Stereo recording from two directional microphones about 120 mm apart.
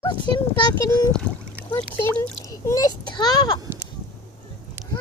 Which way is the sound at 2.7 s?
30° left (ahead or behind).